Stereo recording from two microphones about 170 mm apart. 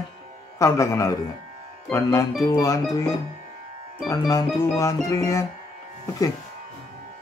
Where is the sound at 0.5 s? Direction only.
20° left (ahead or behind).